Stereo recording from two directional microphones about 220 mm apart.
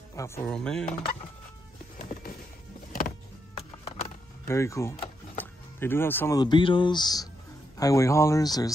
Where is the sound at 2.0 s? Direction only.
30° left (ahead or behind).